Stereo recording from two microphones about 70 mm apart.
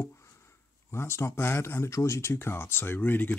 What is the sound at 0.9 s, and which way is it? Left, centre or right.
Speech, left.